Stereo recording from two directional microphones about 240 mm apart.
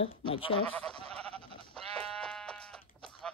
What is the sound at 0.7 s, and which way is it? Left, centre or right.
Sheep, centre.